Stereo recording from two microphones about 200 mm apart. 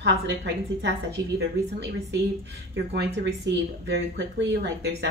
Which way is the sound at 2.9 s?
60° right (ahead or behind).